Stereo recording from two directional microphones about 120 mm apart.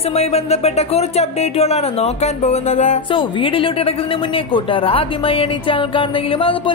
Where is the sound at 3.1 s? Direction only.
45° left (ahead or behind).